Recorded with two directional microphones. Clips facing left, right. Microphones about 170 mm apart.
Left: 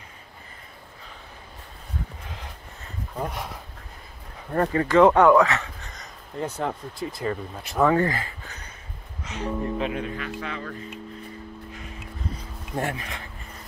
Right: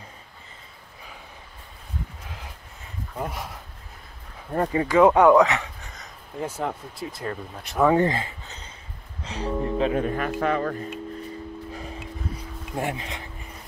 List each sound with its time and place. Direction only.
4.6 s speech: 10° right (ahead or behind)
5.9 s speech: 5° right (ahead or behind)
7.8 s speech: 20° right (ahead or behind); by 10.8 s 50° right (ahead or behind)
12.7 s speech: 15° right (ahead or behind)